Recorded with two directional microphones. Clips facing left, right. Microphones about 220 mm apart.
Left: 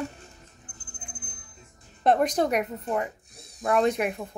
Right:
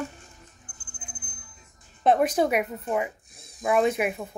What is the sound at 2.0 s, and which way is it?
A woman's voice, 5° right (ahead or behind).